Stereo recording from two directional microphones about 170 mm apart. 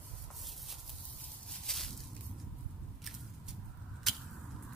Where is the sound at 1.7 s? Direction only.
Centre (ahead or behind).